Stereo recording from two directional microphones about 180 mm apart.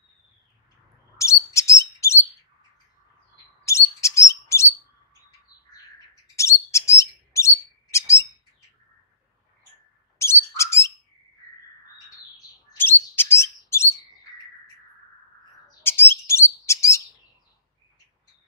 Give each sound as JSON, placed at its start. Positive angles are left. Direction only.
{"t": 1.1, "sound": "bird", "side_deg": 15}
{"t": 3.6, "sound": "bird", "side_deg": 15}
{"t": 6.3, "sound": "bird", "side_deg": 15}
{"t": 10.1, "sound": "bird", "side_deg": 15}
{"t": 12.7, "sound": "chirp", "side_deg": 10}
{"t": 15.8, "sound": "bird", "side_deg": 10}